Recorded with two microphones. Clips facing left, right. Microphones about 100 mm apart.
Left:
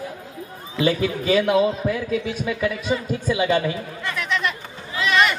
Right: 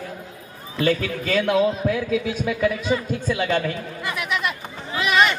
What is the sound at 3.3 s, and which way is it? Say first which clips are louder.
Speech: left 2 dB; 15° left (ahead or behind).